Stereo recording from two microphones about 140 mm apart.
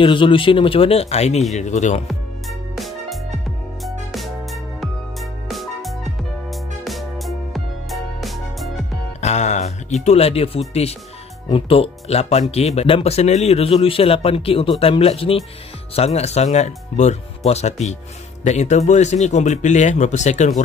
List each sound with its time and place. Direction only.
0.0 s speech: 35° left (ahead or behind); by 2.0 s 60° left (ahead or behind)
2.7 s music: centre (ahead or behind)
9.2 s speech: 55° left (ahead or behind)